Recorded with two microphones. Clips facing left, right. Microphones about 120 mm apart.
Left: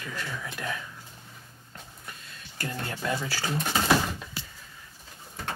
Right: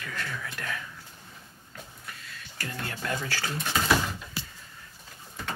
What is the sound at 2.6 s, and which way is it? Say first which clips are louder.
Speech: left 2 dB; 25° left (ahead or behind).